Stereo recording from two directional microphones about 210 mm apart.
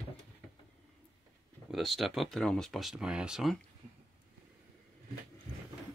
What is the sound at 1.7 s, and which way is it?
Speech, centre (ahead or behind).